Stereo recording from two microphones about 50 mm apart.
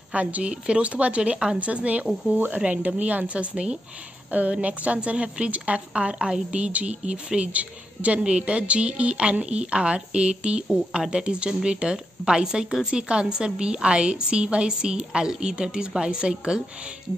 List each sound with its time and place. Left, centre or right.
0.1 s speech: right